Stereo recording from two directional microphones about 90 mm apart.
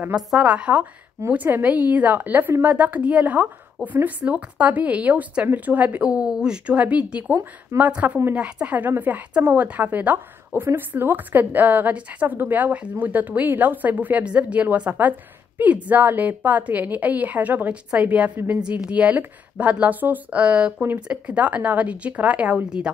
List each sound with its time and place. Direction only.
0.0 s a woman's voice: 10° right (ahead or behind)